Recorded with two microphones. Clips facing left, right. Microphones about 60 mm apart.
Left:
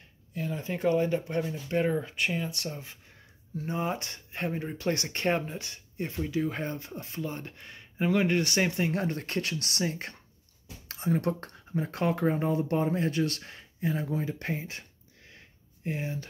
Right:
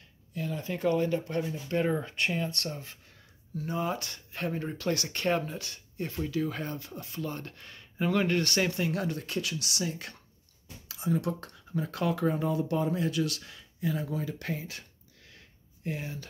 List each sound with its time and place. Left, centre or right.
0.3 s speech: left
1.9 s speech: centre
3.5 s speech: left
4.5 s speech: centre
4.8 s speech: left